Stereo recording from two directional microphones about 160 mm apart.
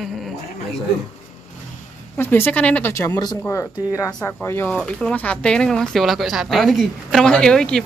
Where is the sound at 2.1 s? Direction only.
15° left (ahead or behind).